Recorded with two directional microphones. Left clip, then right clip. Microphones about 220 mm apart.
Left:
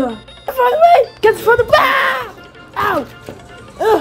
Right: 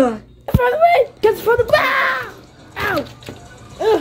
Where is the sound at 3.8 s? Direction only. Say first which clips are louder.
Left 3 dB; 25° left (ahead or behind).